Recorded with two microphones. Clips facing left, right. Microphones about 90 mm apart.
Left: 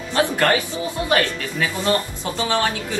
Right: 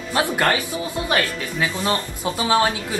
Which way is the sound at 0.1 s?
15° right (ahead or behind).